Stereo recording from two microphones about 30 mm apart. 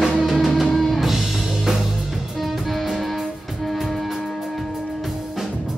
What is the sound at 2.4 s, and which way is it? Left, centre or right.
Music, centre.